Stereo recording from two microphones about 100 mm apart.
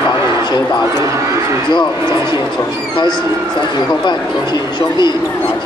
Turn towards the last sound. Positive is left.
turn(degrees=45)  # may be behind; listen again after turning